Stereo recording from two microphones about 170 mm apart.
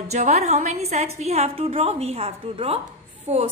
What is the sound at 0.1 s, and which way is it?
A woman's voice, 40° right (ahead or behind).